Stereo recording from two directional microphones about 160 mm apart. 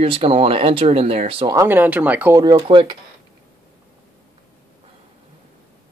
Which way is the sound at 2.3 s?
30° right (ahead or behind).